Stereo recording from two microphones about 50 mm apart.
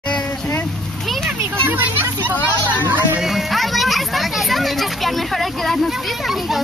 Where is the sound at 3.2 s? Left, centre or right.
Centre.